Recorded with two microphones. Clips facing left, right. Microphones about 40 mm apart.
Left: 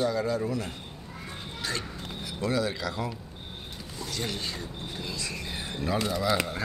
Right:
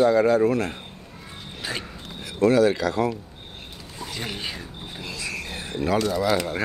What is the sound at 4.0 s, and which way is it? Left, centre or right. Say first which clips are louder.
Speech: right 2 dB; right.